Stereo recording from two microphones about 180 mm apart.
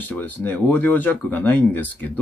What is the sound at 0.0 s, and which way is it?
Speech, 10° left (ahead or behind).